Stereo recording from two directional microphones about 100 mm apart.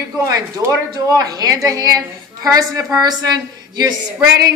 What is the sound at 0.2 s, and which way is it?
A woman's voice, 35° right (ahead or behind).